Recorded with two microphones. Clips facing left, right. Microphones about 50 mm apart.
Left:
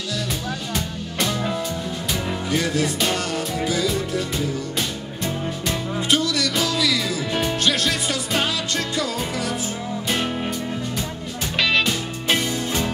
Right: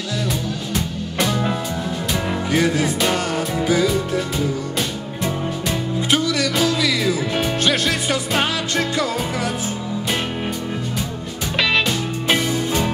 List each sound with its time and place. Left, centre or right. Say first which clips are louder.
0.7 s music: right 5 dB; centre
2.2 s music: right 5 dB; right
6.0 s music: right 2 dB; right
11.5 s music: right 2 dB; centre